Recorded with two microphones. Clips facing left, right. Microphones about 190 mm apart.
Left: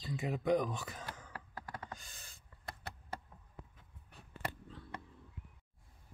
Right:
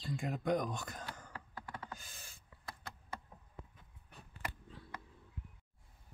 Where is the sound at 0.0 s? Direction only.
5° left (ahead or behind).